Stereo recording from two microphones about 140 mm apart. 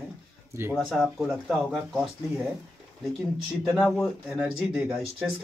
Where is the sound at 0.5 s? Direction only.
15° right (ahead or behind).